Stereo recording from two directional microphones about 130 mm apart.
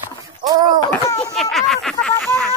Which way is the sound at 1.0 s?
30° left (ahead or behind).